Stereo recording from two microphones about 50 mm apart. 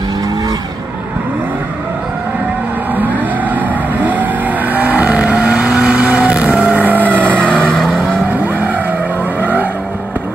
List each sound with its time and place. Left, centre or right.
3.0 s vehicle: right
7.6 s vehicle: centre
7.9 s vehicle: right